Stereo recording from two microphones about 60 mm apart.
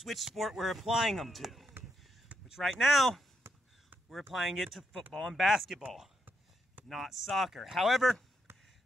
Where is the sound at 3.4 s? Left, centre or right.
Right.